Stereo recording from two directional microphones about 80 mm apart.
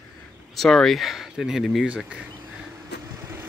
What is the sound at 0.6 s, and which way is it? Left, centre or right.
Speech, centre.